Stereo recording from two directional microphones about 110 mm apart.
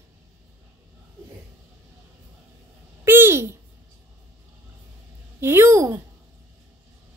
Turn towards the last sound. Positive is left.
turn(degrees=-25)  # may be behind; listen again after turning